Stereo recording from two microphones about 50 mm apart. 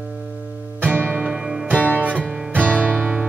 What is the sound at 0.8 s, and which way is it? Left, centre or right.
Music, right.